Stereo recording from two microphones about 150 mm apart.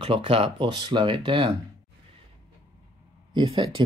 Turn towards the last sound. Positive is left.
turn(degrees=-35)  # may be behind; listen again after turning